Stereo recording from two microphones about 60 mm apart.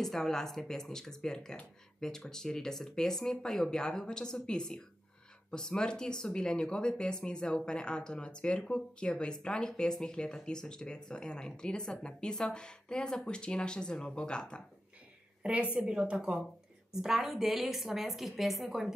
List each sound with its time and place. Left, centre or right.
0.0 s speech: centre
15.4 s a woman's voice: centre
16.9 s a woman's voice: centre